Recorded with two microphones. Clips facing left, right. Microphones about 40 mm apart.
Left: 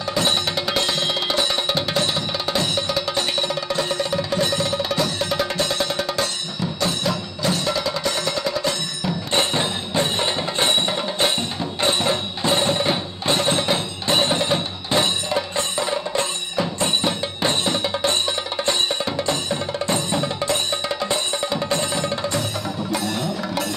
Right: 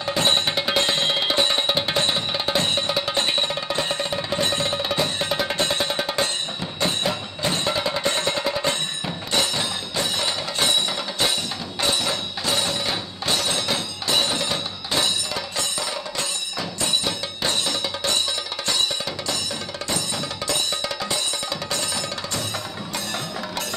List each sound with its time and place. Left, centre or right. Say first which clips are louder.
0.0 s music: even; right
9.3 s music: left 2 dB; left
22.9 s music: left 3 dB; centre